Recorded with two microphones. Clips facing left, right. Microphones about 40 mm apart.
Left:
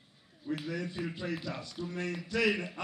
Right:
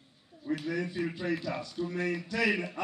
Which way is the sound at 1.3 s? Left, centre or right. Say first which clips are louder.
Right 4 dB; centre.